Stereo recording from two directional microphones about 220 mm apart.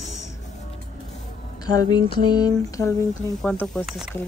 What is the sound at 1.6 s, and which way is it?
Speech, 15° left (ahead or behind).